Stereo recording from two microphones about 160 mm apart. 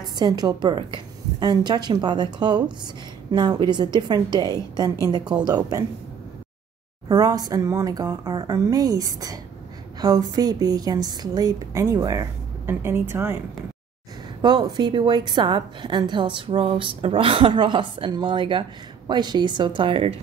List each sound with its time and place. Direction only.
0.0 s a woman's voice: 25° right (ahead or behind)
7.1 s a woman's voice: 25° right (ahead or behind)
14.4 s a woman's voice: 25° right (ahead or behind)